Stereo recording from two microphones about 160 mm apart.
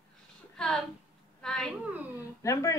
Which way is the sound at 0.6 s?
5° left (ahead or behind).